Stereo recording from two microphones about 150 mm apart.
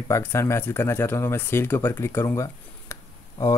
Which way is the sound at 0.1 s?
15° left (ahead or behind).